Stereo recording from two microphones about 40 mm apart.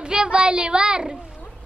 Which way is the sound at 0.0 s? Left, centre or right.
Right.